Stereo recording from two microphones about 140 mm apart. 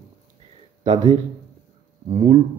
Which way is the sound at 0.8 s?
35° right (ahead or behind).